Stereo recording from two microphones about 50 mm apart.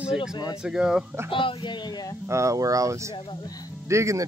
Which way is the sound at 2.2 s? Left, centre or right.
Right.